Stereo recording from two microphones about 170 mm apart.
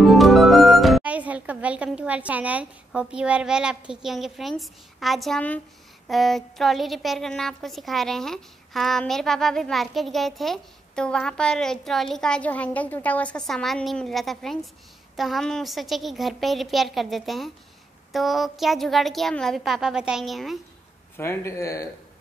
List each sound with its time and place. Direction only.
0.0 s music: centre (ahead or behind)
6.0 s a woman's voice: centre (ahead or behind)
21.2 s speech: 15° left (ahead or behind)